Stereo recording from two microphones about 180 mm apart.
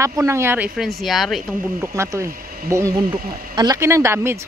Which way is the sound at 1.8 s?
15° right (ahead or behind).